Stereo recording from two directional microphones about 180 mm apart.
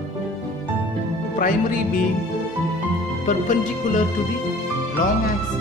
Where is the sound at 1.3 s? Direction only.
50° left (ahead or behind).